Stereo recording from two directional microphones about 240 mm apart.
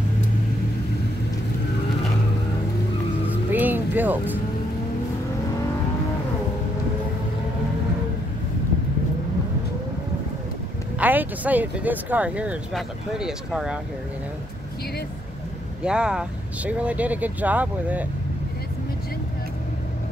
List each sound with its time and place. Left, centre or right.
3.3 s music: centre
11.0 s speech: centre
15.8 s speech: centre